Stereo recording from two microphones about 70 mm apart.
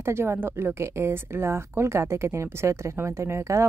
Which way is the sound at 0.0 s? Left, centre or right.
Right.